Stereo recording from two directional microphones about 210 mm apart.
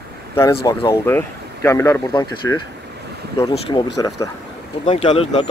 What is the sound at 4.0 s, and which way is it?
Speech, 15° left (ahead or behind).